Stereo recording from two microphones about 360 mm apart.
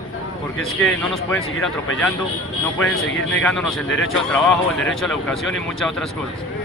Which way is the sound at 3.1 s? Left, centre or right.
Left.